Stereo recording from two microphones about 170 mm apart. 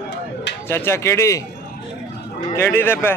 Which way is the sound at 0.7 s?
15° left (ahead or behind).